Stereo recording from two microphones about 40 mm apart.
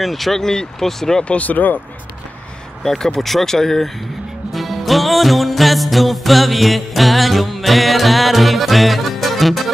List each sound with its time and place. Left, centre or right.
0.0 s speech: centre
1.2 s speech: left
1.5 s speech: left
2.8 s speech: centre
4.5 s music: centre